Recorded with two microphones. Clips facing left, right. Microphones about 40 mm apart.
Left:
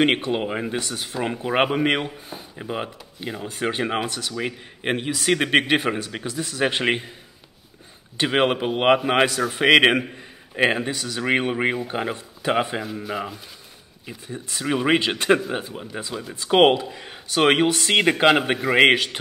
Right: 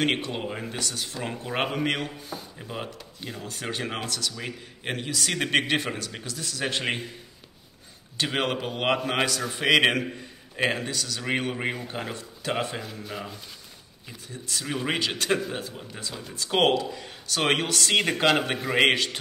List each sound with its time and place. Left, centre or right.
0.0 s speech: left
8.2 s speech: left
14.0 s a man's voice: left